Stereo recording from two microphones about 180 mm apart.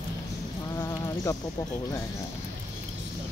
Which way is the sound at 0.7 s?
15° left (ahead or behind).